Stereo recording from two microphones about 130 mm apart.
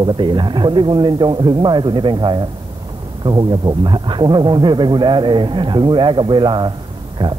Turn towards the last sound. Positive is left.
turn(degrees=-35)  # may be behind; listen again after turning